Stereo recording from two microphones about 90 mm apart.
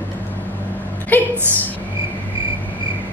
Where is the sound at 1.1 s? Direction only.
20° left (ahead or behind).